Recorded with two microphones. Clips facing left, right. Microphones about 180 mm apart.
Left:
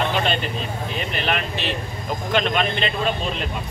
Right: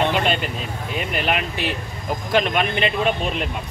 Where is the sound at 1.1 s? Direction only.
10° right (ahead or behind).